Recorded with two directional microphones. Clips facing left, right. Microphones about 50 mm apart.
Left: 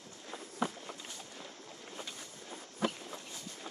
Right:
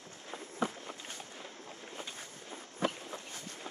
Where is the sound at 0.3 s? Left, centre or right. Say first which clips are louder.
Right 1 dB; centre.